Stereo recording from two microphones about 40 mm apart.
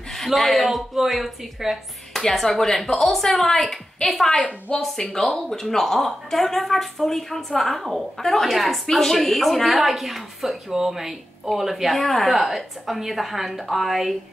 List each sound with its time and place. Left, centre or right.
0.1 s speech: centre
2.1 s speech: centre
4.7 s speech: left
5.5 s speech: centre